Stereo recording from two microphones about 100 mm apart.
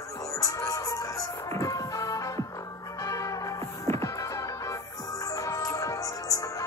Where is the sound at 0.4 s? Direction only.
35° left (ahead or behind).